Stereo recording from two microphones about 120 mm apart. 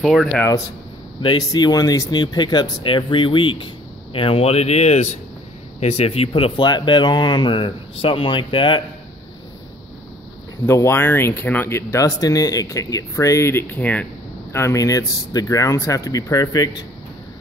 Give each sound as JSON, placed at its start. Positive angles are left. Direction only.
{"t": 0.0, "sound": "speech", "side_deg": 0}
{"t": 1.2, "sound": "speech", "side_deg": 40}
{"t": 10.7, "sound": "speech", "side_deg": 20}
{"t": 14.5, "sound": "speech", "side_deg": 25}